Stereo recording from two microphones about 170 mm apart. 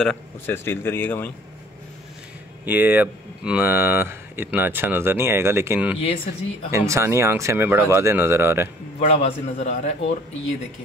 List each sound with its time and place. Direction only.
0.0 s speech: 10° left (ahead or behind)
2.6 s speech: 10° right (ahead or behind)
9.0 s a man's voice: 40° left (ahead or behind)